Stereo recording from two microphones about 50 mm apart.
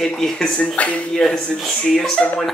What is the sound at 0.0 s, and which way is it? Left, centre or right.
Speech, centre.